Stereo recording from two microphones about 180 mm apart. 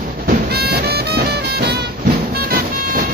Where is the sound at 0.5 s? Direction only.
60° right (ahead or behind).